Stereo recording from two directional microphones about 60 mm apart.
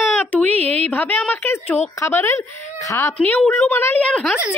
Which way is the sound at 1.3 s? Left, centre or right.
Left.